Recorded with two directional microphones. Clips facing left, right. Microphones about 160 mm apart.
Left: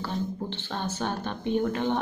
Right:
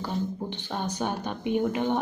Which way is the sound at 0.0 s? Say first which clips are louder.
Right 1 dB; 15° right (ahead or behind).